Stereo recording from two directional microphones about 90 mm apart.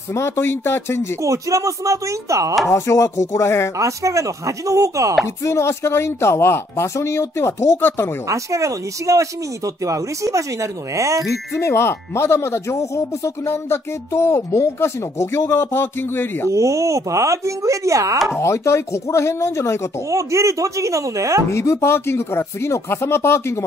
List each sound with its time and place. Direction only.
0.1 s speech: 25° left (ahead or behind)
1.2 s speech: 35° right (ahead or behind)
2.7 s speech: 35° left (ahead or behind)
3.7 s speech: 35° right (ahead or behind)
5.4 s speech: 30° left (ahead or behind)
8.3 s speech: 35° right (ahead or behind)
11.5 s speech: 30° left (ahead or behind)
16.5 s speech: 35° right (ahead or behind)
18.4 s speech: 30° left (ahead or behind)
20.1 s speech: 35° right (ahead or behind)
21.5 s speech: 30° left (ahead or behind)